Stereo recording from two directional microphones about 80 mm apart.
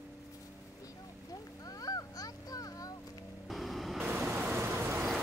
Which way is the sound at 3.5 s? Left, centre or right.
Centre.